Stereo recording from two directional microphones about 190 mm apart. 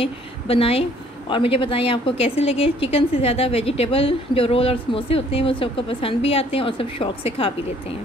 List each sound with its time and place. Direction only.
0.0 s a woman's voice: 30° left (ahead or behind)